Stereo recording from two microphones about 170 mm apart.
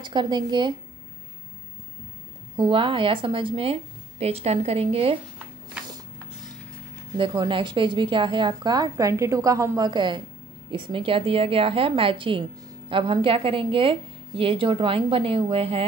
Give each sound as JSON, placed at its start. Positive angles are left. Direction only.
{"t": 0.0, "sound": "a woman's voice", "side_deg": -25}
{"t": 2.5, "sound": "a woman's voice", "side_deg": -30}
{"t": 7.2, "sound": "a woman's voice", "side_deg": -30}